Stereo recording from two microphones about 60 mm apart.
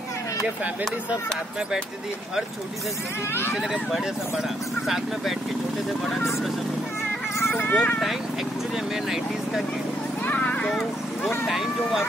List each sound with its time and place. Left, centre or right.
4.8 s speech: centre
7.3 s speech: left
10.2 s a child's voice: left
11.4 s speech: centre